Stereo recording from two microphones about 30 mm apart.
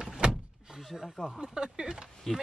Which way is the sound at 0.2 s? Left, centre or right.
Right.